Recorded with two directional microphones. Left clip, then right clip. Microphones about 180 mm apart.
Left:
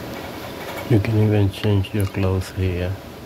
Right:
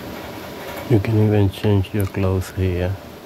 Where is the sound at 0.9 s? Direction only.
20° right (ahead or behind).